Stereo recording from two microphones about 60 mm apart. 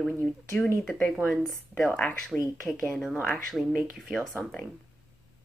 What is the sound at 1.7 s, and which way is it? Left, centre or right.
Speech, centre.